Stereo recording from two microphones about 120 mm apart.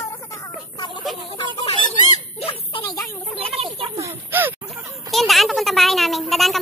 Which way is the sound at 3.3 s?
55° right (ahead or behind).